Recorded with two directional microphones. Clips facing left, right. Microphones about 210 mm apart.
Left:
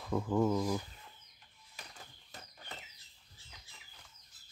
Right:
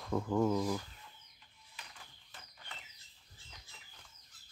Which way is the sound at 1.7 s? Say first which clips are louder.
Left 3 dB; 40° left (ahead or behind).